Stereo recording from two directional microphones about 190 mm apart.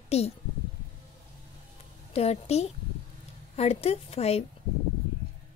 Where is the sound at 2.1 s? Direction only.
35° left (ahead or behind).